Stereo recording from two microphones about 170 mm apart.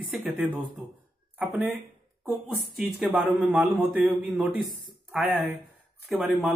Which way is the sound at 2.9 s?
5° right (ahead or behind).